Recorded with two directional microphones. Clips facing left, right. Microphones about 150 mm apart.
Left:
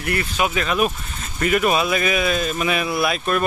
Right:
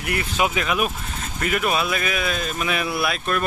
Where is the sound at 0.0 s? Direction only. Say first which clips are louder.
Left 1 dB; 15° right (ahead or behind).